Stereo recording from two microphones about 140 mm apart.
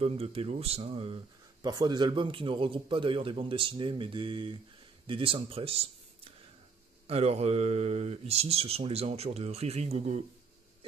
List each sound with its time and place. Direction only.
0.0 s speech: 45° right (ahead or behind)